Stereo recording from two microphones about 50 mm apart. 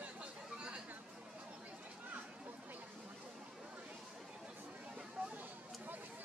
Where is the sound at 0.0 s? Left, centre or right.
Right.